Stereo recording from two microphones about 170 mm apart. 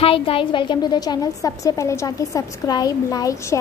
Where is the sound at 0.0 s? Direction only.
35° left (ahead or behind).